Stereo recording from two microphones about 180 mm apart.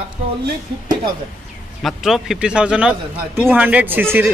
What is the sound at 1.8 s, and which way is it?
Speech, centre (ahead or behind).